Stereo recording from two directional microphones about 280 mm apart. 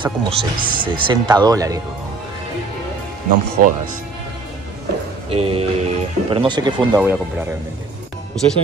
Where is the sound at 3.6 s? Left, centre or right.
Right.